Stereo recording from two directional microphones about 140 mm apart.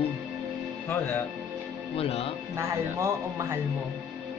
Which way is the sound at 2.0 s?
45° left (ahead or behind).